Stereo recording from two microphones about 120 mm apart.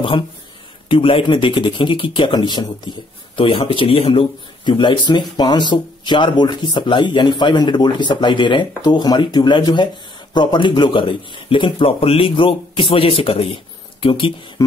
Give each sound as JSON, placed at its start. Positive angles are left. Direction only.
{"t": 0.8, "sound": "speech", "side_deg": 45}